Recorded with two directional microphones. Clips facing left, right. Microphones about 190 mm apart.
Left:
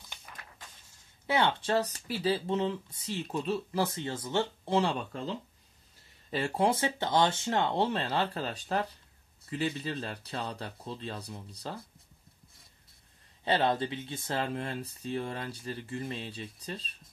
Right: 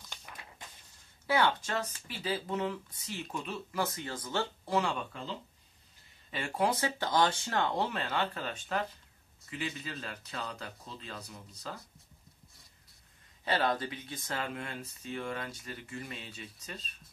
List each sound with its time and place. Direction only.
0.3 s a sound: 5° right (ahead or behind)
1.2 s speech: 25° left (ahead or behind)
6.3 s speech: 30° left (ahead or behind)
13.4 s speech: 25° left (ahead or behind)